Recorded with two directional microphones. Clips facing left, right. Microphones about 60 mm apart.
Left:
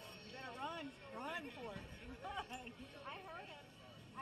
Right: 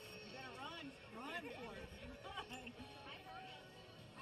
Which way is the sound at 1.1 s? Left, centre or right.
Centre.